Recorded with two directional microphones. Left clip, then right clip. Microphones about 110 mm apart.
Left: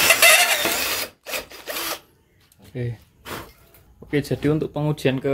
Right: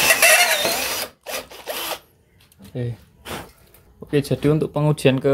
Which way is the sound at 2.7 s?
Centre (ahead or behind).